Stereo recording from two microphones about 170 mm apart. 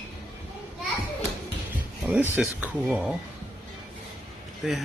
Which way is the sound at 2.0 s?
10° right (ahead or behind).